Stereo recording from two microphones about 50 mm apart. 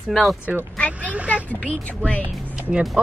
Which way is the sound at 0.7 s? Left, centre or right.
Left.